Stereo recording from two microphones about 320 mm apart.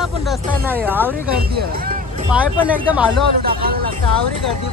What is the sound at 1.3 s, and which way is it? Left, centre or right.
Speech, right.